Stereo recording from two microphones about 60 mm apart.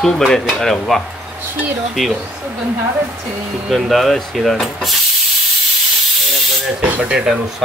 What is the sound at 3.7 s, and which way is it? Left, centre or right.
Speech, centre.